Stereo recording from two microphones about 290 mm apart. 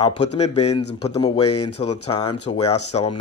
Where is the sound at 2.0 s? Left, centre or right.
Left.